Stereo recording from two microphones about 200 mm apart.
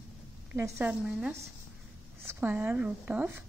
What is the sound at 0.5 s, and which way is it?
A woman's voice, 10° right (ahead or behind).